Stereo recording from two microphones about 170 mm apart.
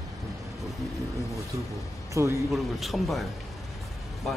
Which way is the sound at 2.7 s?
Centre (ahead or behind).